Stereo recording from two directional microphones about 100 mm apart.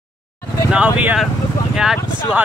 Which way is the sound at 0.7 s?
10° right (ahead or behind).